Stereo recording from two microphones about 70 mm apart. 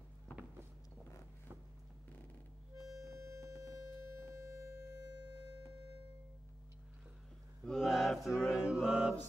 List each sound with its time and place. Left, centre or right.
2.8 s harmonica: centre
3.1 s a sound: right
4.6 s music: right
7.6 s mantra: centre
8.5 s mantra: centre